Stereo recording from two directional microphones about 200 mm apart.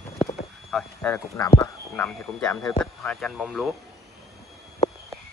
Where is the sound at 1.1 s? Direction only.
15° left (ahead or behind).